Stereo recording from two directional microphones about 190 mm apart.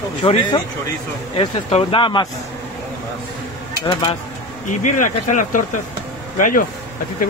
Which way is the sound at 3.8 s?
25° left (ahead or behind).